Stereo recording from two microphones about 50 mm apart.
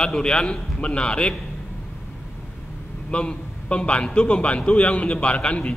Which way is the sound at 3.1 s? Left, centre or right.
Left.